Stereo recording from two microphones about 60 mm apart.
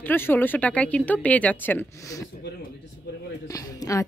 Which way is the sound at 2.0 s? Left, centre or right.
Left.